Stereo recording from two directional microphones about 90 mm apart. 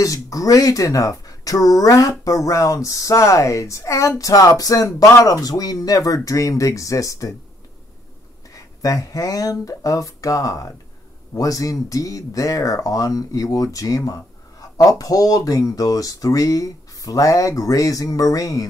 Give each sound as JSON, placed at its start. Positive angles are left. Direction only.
{"t": 0.0, "sound": "speech", "side_deg": 40}
{"t": 8.5, "sound": "speech", "side_deg": 40}